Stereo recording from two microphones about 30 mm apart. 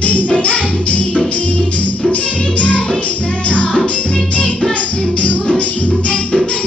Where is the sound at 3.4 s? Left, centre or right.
Left.